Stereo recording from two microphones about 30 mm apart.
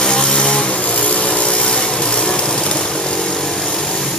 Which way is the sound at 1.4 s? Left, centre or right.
Left.